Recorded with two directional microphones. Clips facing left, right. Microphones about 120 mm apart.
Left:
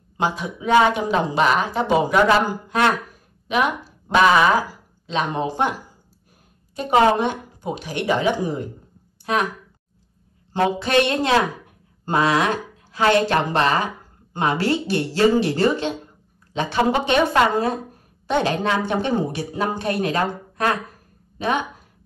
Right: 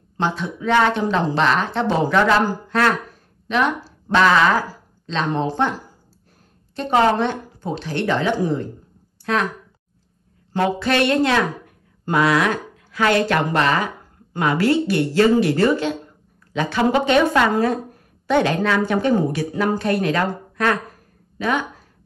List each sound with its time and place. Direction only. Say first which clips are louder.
0.2 s a woman's voice: right 1 dB; 10° left (ahead or behind)
10.5 s speech: left 1 dB; 20° left (ahead or behind)
18.3 s speech: right 2 dB; 20° left (ahead or behind)